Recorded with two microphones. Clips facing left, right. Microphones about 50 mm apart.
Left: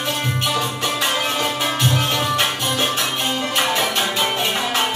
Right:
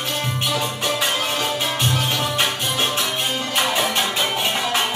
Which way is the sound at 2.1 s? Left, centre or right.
Centre.